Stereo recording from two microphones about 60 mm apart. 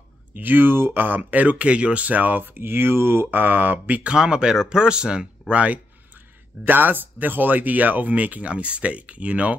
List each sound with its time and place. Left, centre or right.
0.4 s speech: right
4.1 s speech: centre
6.6 s speech: right